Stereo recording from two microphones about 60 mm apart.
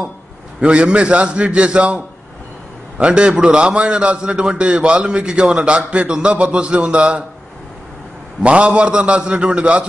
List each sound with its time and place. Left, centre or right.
0.6 s a man's voice: centre
8.4 s a man's voice: centre